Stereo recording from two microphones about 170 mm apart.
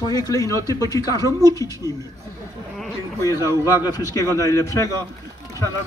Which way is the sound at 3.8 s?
20° left (ahead or behind).